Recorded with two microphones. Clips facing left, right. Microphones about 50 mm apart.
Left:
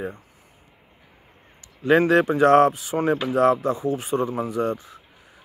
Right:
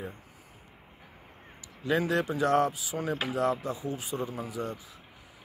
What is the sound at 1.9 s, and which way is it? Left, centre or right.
Speech, left.